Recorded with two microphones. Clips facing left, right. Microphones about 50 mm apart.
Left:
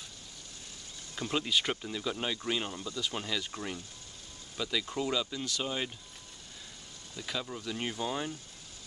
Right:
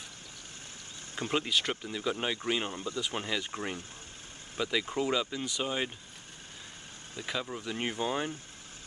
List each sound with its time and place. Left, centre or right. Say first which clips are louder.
1.2 s speech: right 2 dB; right
1.5 s speech: even; centre
1.9 s speech: right 2 dB; centre
7.2 s speech: right 2 dB; centre
7.7 s speech: right 3 dB; right